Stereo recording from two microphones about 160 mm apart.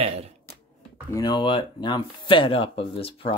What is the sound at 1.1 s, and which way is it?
Speech, 25° left (ahead or behind).